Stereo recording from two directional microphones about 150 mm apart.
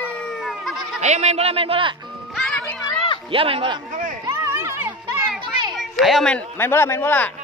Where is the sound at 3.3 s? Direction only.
40° right (ahead or behind).